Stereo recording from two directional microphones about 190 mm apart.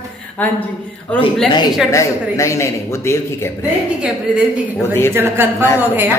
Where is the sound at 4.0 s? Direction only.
5° right (ahead or behind).